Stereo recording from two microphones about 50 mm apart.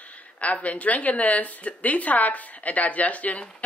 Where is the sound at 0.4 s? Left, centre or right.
Left.